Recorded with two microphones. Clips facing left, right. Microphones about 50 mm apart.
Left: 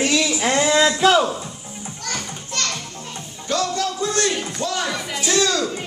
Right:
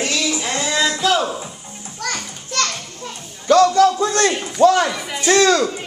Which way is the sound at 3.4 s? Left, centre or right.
Right.